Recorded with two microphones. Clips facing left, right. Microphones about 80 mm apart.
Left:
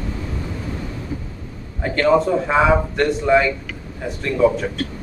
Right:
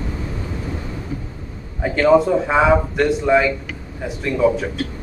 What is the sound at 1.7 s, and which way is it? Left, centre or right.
A man's voice, centre.